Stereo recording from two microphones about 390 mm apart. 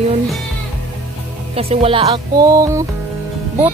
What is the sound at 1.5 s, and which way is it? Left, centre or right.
Speech, centre.